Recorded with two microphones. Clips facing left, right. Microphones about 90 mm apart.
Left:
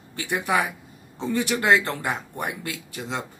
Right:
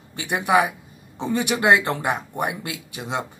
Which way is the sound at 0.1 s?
20° right (ahead or behind).